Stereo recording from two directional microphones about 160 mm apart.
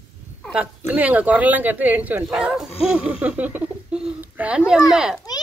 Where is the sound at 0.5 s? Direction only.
10° right (ahead or behind).